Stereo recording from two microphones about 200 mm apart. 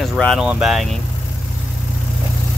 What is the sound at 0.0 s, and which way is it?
Speech, centre (ahead or behind).